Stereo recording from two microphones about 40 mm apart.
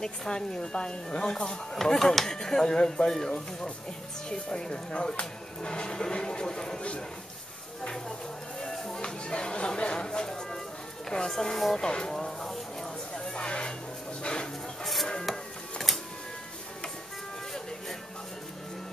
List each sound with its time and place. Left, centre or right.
0.0 s speech: centre
8.5 s music: centre
9.0 s speech: left
12.2 s a sound: centre
13.1 s a sound: left
14.8 s music: centre